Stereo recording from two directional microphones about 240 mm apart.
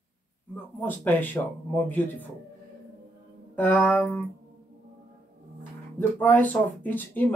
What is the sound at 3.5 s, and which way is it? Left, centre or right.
Speech, centre.